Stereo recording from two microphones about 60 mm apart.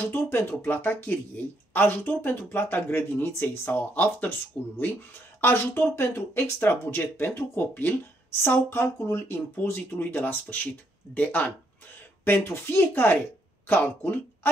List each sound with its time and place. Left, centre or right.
0.0 s speech: left
12.3 s speech: left